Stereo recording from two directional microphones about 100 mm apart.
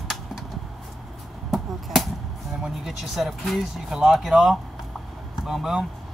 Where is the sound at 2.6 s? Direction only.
Centre (ahead or behind).